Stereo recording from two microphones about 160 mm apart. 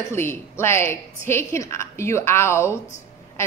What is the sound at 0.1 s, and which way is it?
A woman's voice, 15° left (ahead or behind).